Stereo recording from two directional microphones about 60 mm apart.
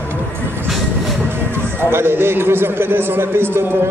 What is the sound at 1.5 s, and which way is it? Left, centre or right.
A man's voice, right.